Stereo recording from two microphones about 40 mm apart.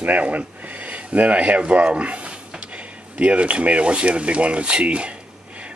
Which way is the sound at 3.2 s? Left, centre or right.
Right.